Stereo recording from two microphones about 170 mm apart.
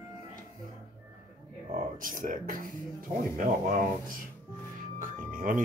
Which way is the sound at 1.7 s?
50° right (ahead or behind).